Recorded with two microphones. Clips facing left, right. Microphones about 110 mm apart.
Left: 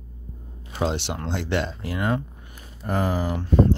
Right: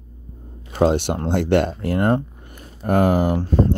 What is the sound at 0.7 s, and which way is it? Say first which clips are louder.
Speech: right 8 dB; 50° right (ahead or behind).